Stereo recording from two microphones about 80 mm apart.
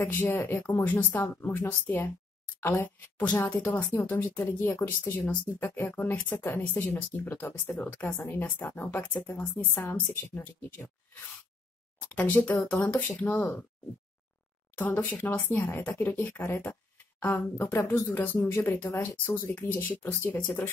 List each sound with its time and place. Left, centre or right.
0.0 s speech: left
5.2 s speech: centre
5.6 s speech: left
12.0 s speech: centre
14.8 s speech: left